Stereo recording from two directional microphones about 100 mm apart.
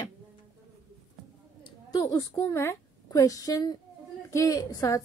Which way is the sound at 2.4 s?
30° left (ahead or behind).